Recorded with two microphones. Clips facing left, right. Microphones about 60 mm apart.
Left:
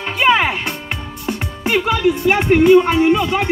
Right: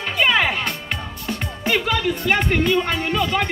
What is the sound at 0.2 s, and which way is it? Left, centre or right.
Music, centre.